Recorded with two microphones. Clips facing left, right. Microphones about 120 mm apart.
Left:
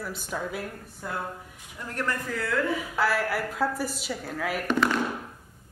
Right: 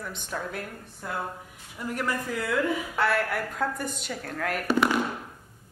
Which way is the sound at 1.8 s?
10° right (ahead or behind).